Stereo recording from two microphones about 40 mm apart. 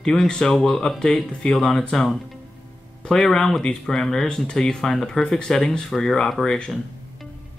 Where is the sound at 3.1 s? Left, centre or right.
Centre.